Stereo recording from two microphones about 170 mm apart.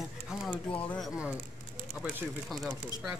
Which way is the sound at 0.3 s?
Centre (ahead or behind).